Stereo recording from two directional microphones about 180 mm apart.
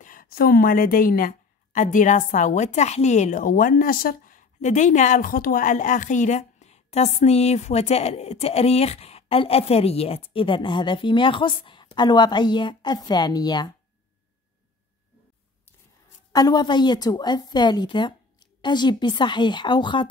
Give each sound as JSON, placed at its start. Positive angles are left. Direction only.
{"t": 0.0, "sound": "a woman's voice", "side_deg": 50}
{"t": 16.3, "sound": "a woman's voice", "side_deg": 20}